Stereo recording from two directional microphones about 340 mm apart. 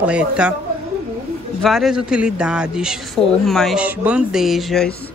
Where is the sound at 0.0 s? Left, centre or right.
Centre.